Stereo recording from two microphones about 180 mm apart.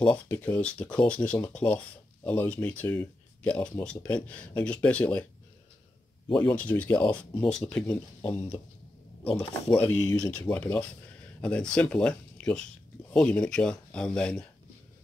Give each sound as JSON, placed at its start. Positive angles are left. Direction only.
{"t": 0.0, "sound": "speech", "side_deg": 10}
{"t": 6.2, "sound": "speech", "side_deg": 25}
{"t": 6.5, "sound": "speech", "side_deg": 10}
{"t": 9.8, "sound": "speech", "side_deg": 5}